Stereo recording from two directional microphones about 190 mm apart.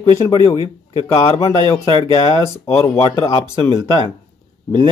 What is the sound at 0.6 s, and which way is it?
Speech, 30° left (ahead or behind).